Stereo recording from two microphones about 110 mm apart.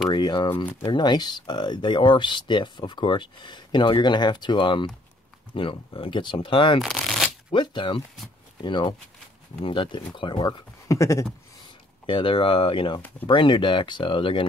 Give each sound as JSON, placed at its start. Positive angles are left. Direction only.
{"t": 0.1, "sound": "speech", "side_deg": 45}
{"t": 6.8, "sound": "shuffling cards", "side_deg": 0}
{"t": 7.5, "sound": "speech", "side_deg": 45}
{"t": 10.9, "sound": "a sound", "side_deg": 30}
{"t": 12.1, "sound": "speech", "side_deg": 50}